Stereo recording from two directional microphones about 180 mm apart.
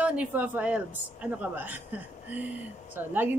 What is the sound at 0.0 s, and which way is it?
A woman's voice, 10° right (ahead or behind).